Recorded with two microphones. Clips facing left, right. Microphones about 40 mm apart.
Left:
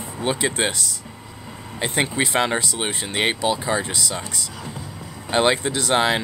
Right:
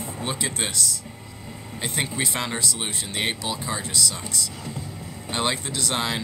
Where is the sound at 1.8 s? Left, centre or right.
Left.